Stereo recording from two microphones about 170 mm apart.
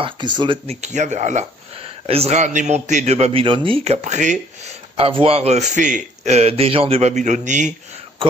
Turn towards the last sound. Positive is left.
turn(degrees=-45)  # may be behind; listen again after turning